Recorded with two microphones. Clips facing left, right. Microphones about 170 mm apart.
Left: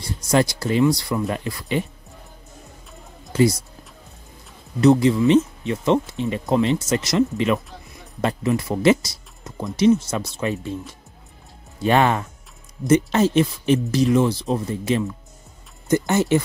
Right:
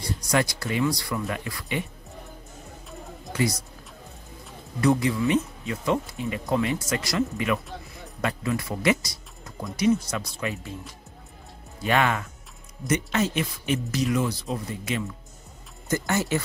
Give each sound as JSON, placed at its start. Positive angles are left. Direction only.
{"t": 0.2, "sound": "speech", "side_deg": 25}
{"t": 4.7, "sound": "speech", "side_deg": 25}
{"t": 11.8, "sound": "speech", "side_deg": 30}